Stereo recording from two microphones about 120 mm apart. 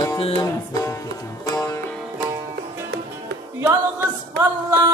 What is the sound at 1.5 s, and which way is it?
Music, 30° left (ahead or behind).